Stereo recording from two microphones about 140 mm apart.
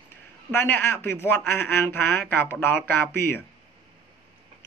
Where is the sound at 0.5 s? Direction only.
15° left (ahead or behind).